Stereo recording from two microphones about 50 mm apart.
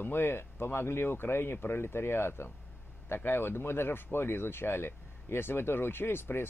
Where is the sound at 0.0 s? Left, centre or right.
Left.